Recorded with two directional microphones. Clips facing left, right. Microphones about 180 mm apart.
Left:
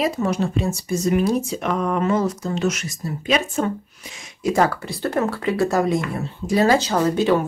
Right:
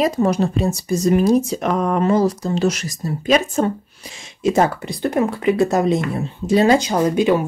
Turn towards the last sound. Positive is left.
turn(degrees=-15)  # may be behind; listen again after turning